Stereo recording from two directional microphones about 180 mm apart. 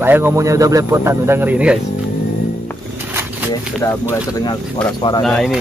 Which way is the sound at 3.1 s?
10° right (ahead or behind).